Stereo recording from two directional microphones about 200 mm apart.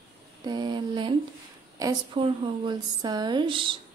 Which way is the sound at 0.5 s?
20° right (ahead or behind).